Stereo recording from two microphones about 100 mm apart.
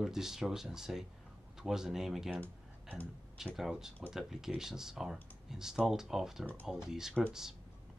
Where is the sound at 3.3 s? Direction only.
5° right (ahead or behind).